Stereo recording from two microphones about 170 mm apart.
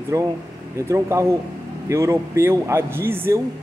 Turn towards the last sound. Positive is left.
turn(degrees=-15)  # may be behind; listen again after turning